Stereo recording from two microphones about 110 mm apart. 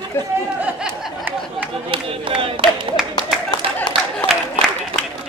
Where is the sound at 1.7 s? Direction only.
55° right (ahead or behind).